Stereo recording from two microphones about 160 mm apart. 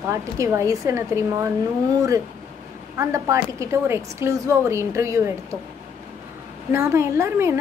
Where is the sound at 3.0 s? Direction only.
20° right (ahead or behind).